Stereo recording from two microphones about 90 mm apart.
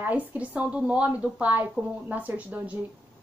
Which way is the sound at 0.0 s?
20° right (ahead or behind).